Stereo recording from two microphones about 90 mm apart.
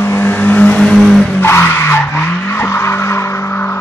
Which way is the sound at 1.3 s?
25° left (ahead or behind).